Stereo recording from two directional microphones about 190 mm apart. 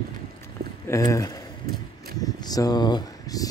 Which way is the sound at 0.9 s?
15° left (ahead or behind).